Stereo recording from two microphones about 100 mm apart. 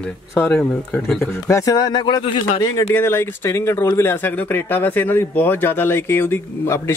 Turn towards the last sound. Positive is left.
turn(degrees=25)  # may be behind; listen again after turning